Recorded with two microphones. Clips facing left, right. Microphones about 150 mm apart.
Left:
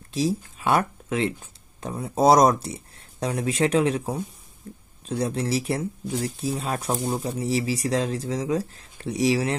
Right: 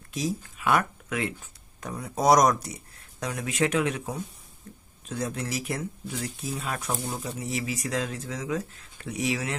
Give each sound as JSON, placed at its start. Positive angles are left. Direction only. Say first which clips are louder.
{"t": 0.1, "sound": "speech", "louder": "left 6 dB", "side_deg": 30}
{"t": 4.7, "sound": "a sound", "louder": "left 6 dB", "side_deg": 30}
{"t": 5.0, "sound": "speech", "louder": "left 6 dB", "side_deg": 35}